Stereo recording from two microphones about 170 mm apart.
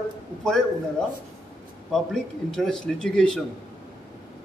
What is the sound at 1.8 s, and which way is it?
A man's voice, centre (ahead or behind).